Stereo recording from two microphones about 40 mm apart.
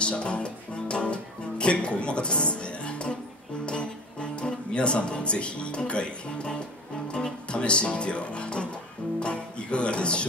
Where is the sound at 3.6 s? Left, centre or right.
Left.